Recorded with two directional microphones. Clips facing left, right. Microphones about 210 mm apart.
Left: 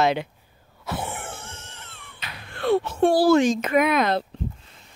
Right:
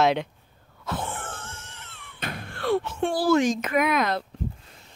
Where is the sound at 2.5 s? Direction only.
25° left (ahead or behind).